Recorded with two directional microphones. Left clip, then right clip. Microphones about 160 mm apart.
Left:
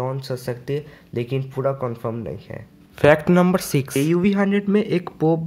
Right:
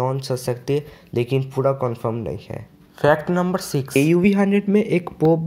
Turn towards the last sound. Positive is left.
turn(degrees=0)  # may be behind; listen again after turning